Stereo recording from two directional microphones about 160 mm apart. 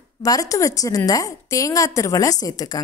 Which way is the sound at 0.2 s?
20° left (ahead or behind).